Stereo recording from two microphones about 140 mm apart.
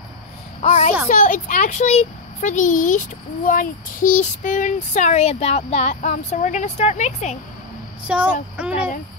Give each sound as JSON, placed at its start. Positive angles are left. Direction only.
{"t": 0.6, "sound": "a child's voice", "side_deg": 50}
{"t": 1.0, "sound": "a woman's voice", "side_deg": 65}
{"t": 8.1, "sound": "speech", "side_deg": -10}